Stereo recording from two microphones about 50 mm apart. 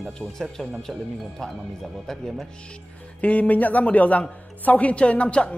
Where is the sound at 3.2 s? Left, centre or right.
Left.